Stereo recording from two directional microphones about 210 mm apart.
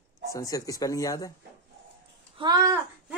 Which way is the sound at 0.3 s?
15° left (ahead or behind).